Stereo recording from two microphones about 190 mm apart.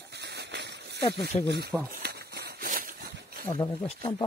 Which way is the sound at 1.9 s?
55° right (ahead or behind).